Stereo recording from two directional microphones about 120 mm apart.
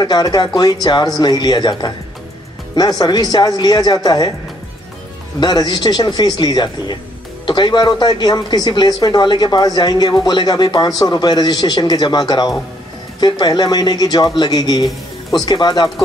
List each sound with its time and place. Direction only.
0.0 s speech: 35° left (ahead or behind)
5.4 s speech: 35° left (ahead or behind)